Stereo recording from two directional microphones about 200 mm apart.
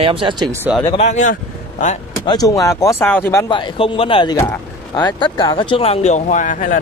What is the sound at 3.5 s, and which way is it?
Speech, 25° left (ahead or behind).